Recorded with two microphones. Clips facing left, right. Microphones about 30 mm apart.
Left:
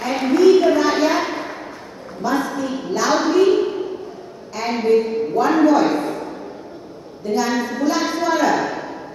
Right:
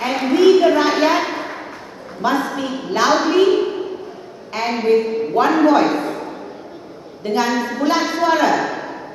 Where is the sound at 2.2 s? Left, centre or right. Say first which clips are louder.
Right 2 dB; right.